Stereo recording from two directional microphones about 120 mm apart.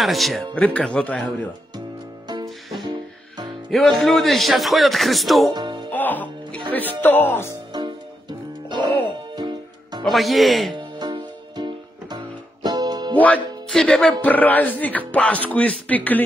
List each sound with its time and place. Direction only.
0.0 s speech: centre (ahead or behind)
2.2 s music: 35° right (ahead or behind)
3.7 s speech: centre (ahead or behind)
5.5 s speech: 40° right (ahead or behind)
5.9 s music: 15° left (ahead or behind)
6.7 s speech: 15° left (ahead or behind)
7.7 s music: 40° right (ahead or behind)
10.0 s speech: centre (ahead or behind)
10.7 s music: 40° right (ahead or behind)
13.1 s speech: 15° left (ahead or behind)